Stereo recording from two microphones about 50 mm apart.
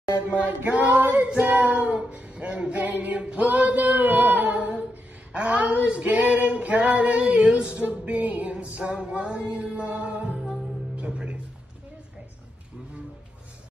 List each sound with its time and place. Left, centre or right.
0.4 s child singing: right
2.2 s a sound: right
2.6 s singing: right
5.3 s a sound: right
5.9 s female singing: right
7.3 s a sound: centre
7.8 s music: right
10.3 s music: centre
11.1 s music: centre